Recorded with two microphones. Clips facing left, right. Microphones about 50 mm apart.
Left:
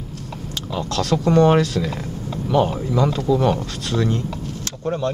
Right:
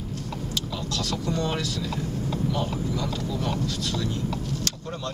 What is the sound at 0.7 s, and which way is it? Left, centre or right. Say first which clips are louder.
Speech: left 12 dB; left.